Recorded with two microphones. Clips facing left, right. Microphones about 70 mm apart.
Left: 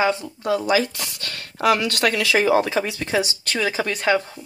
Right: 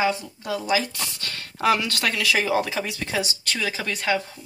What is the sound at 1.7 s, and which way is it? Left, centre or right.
Speech, centre.